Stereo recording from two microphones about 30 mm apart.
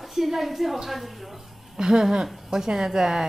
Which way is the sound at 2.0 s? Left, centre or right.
Centre.